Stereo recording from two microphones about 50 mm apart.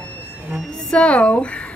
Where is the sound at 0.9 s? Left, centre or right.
Left.